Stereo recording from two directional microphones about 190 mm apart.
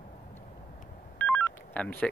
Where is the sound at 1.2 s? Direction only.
10° left (ahead or behind).